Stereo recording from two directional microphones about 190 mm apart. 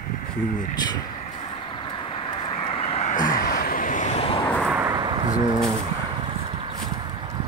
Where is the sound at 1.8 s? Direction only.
25° left (ahead or behind).